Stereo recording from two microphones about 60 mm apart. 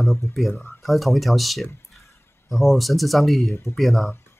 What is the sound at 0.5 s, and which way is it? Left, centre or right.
Speech, left.